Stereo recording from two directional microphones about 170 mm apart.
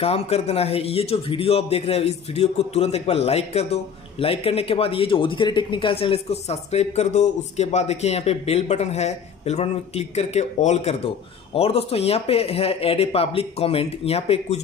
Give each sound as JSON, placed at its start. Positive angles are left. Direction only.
{"t": 0.0, "sound": "a man's voice", "side_deg": 35}